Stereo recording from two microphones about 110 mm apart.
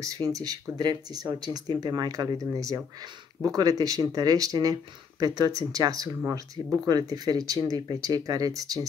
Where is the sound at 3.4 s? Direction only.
35° right (ahead or behind).